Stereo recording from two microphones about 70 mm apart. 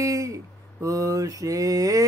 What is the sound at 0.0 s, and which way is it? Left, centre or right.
Mantra, right.